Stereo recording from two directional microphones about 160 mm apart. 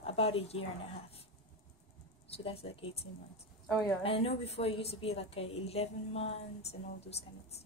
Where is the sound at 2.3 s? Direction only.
35° left (ahead or behind).